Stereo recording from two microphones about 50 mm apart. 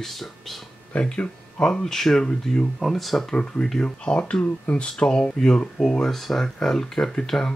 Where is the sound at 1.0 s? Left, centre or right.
Left.